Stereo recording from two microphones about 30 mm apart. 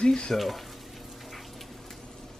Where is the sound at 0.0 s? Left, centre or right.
Left.